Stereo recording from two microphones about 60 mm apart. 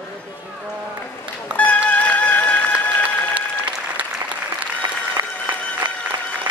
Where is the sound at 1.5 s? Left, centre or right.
Left.